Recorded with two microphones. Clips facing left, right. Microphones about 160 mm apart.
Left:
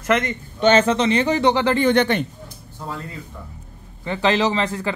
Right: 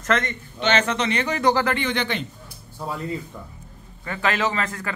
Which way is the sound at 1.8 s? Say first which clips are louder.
Left 8 dB; 50° left (ahead or behind).